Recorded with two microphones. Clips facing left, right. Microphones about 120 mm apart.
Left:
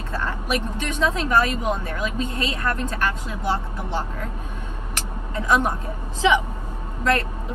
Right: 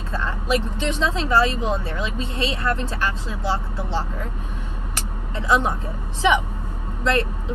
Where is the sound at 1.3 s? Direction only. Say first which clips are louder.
Right 4 dB; 25° right (ahead or behind).